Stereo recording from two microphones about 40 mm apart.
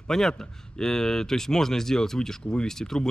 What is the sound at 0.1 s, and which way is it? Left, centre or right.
Speech, centre.